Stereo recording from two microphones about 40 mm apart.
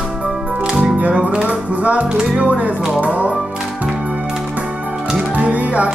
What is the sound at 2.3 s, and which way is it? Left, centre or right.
Speech, right.